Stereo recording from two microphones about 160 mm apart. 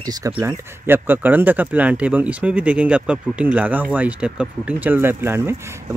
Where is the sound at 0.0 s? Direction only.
20° right (ahead or behind).